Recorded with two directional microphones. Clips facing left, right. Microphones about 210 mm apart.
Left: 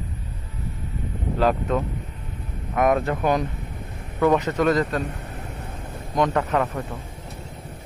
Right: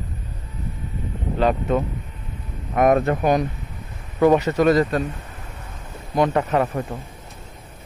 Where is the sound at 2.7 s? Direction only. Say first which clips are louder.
Right 3 dB; 35° right (ahead or behind).